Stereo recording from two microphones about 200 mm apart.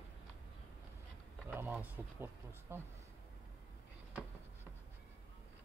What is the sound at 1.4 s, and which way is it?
Speech, 10° right (ahead or behind).